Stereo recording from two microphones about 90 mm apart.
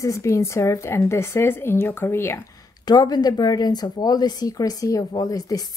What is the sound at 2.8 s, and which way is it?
Speech, 50° left (ahead or behind).